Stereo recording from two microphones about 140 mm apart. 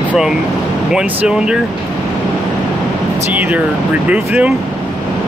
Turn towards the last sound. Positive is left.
turn(degrees=-15)  # may be behind; listen again after turning